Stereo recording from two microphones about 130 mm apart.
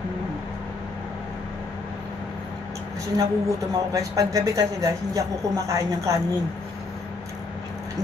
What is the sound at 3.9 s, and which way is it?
Speech, 25° right (ahead or behind).